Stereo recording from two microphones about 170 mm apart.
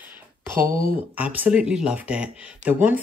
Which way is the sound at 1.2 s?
10° right (ahead or behind).